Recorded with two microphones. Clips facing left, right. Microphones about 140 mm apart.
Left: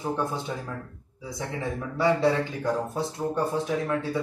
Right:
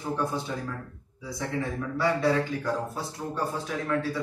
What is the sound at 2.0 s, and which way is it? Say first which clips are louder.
A man's voice: left 2 dB; 20° left (ahead or behind).